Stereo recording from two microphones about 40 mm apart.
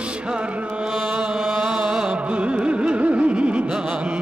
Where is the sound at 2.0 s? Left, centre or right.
Right.